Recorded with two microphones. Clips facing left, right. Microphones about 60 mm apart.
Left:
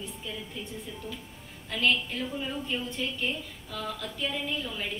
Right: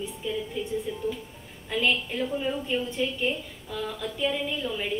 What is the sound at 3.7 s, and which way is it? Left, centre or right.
A woman's voice, centre.